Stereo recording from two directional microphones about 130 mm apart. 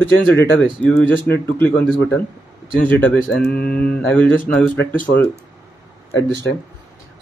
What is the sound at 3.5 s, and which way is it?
Speech, 10° left (ahead or behind).